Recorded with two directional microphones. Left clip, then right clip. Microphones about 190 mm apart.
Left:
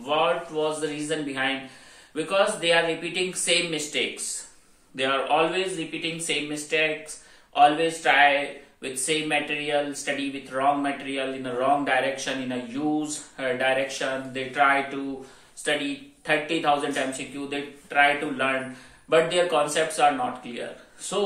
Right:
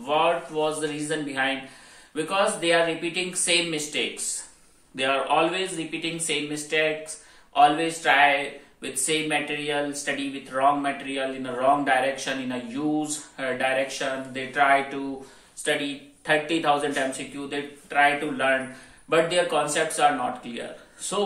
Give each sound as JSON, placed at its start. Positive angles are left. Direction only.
{"t": 0.0, "sound": "speech", "side_deg": -5}